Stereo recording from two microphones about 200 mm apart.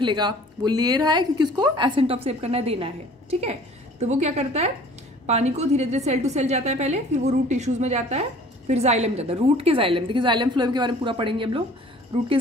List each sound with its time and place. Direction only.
0.0 s a woman's voice: 20° right (ahead or behind)